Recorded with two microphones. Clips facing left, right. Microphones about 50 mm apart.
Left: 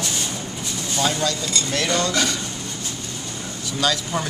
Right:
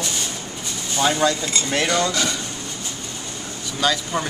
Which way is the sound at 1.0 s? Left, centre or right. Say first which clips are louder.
Right 4 dB; right.